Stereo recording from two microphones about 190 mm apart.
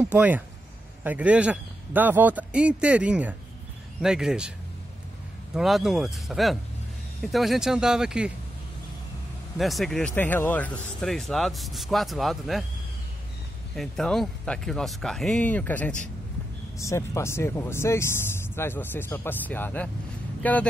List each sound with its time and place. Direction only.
0.0 s a man's voice: 10° right (ahead or behind)
5.5 s speech: centre (ahead or behind)
9.6 s speech: centre (ahead or behind)
13.7 s speech: centre (ahead or behind)